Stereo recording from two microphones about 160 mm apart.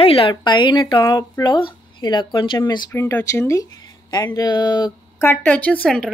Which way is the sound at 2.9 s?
15° left (ahead or behind).